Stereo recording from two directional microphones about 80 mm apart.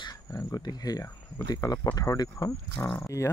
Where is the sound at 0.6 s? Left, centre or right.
Left.